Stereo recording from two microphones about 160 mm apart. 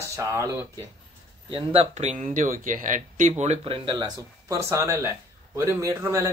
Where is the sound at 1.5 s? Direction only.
35° right (ahead or behind).